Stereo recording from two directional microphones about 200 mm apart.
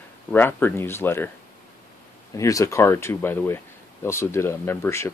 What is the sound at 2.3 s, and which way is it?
Speech, 15° left (ahead or behind).